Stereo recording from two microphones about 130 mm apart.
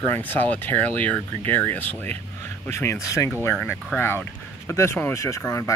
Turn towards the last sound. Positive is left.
turn(degrees=25)  # may be behind; listen again after turning